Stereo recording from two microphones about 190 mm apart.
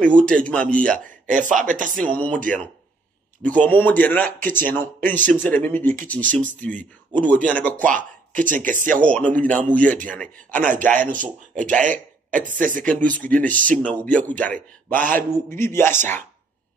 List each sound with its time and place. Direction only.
0.0 s speech: 5° left (ahead or behind)
0.9 s speech: 40° right (ahead or behind)
2.0 s speech: 5° left (ahead or behind)
3.4 s speech: 10° left (ahead or behind)
7.7 s speech: 45° right (ahead or behind)
9.0 s speech: 5° left (ahead or behind)
10.5 s a man's voice: 40° right (ahead or behind)
10.8 s speech: 10° left (ahead or behind)
12.4 s speech: 45° right (ahead or behind)
12.8 s speech: 5° left (ahead or behind)
15.0 s speech: 45° right (ahead or behind)
15.5 s speech: 10° left (ahead or behind)